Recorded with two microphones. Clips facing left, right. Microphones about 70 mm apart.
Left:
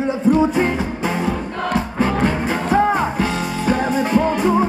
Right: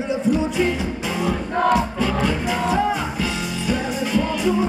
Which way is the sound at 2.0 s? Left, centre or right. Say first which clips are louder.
Left 3 dB; left.